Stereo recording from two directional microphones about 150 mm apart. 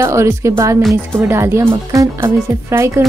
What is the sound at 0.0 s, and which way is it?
Speech, 20° right (ahead or behind).